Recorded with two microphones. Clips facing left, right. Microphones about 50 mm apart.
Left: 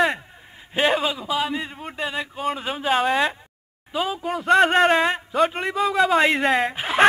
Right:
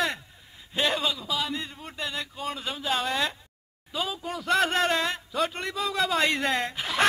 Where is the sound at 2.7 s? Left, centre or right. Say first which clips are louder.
Left 7 dB; left.